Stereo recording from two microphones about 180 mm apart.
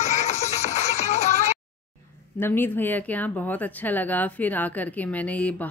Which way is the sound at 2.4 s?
10° left (ahead or behind).